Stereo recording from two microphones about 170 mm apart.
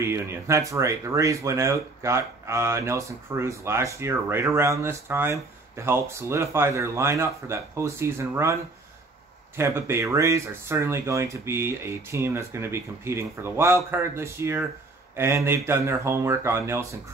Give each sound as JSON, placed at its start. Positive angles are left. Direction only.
{"t": 0.0, "sound": "speech", "side_deg": -15}
{"t": 9.6, "sound": "speech", "side_deg": -15}